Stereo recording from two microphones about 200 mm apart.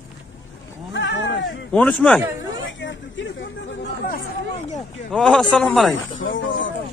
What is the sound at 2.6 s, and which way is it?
Hubbub, 70° left (ahead or behind).